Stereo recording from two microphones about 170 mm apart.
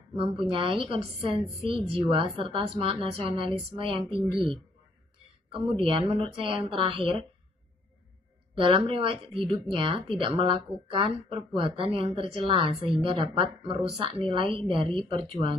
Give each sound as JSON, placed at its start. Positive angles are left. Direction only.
{"t": 0.1, "sound": "speech", "side_deg": -30}
{"t": 8.5, "sound": "a woman's voice", "side_deg": -30}